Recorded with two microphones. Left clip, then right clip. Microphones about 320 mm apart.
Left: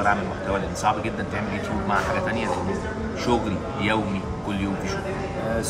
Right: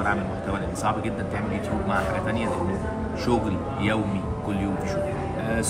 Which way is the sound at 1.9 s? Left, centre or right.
Centre.